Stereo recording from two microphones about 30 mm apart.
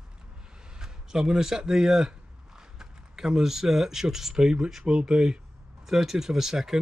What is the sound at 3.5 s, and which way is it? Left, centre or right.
Speech, centre.